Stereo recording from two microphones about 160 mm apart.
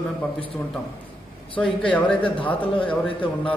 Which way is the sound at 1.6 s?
5° left (ahead or behind).